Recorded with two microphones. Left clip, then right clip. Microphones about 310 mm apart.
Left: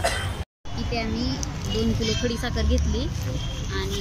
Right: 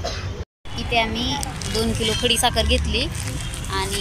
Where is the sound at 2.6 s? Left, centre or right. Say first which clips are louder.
Right 7 dB; centre.